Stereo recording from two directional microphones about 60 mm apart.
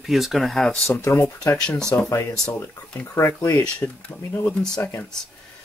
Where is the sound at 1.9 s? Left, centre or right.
Left.